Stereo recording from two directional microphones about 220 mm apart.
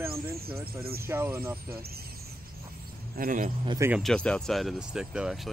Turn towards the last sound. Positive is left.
turn(degrees=0)  # may be behind; listen again after turning